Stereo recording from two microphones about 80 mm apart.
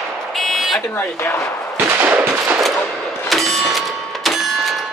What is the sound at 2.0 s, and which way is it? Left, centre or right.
Machine gun, right.